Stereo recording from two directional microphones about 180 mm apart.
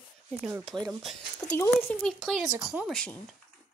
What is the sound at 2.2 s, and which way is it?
Speech, centre (ahead or behind).